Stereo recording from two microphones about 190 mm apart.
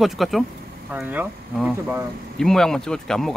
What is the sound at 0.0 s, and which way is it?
Speech, centre (ahead or behind).